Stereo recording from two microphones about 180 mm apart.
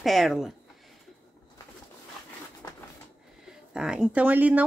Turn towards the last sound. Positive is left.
turn(degrees=-10)  # may be behind; listen again after turning